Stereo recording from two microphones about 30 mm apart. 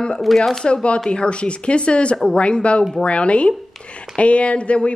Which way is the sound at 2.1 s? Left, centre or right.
Left.